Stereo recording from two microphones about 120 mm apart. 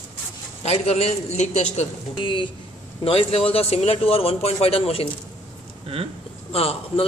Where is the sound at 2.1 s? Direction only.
45° left (ahead or behind).